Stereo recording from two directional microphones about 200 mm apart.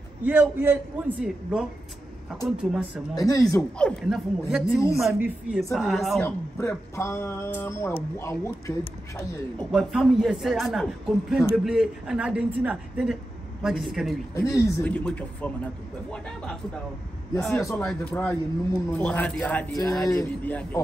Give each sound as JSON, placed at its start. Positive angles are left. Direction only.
{"t": 0.2, "sound": "a woman's voice", "side_deg": -10}
{"t": 3.2, "sound": "speech", "side_deg": 15}
{"t": 3.7, "sound": "a man's voice", "side_deg": 5}
{"t": 6.6, "sound": "speech", "side_deg": 15}
{"t": 9.6, "sound": "a man's voice", "side_deg": 0}
{"t": 14.3, "sound": "speech", "side_deg": 15}
{"t": 17.6, "sound": "speech", "side_deg": 15}